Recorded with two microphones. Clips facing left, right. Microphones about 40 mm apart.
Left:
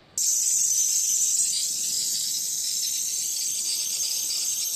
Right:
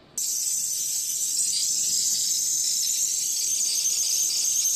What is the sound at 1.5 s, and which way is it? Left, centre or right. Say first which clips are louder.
Squeal: right 2 dB; centre.